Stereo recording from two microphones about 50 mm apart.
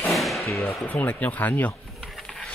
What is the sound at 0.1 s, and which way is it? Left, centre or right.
Whip, centre.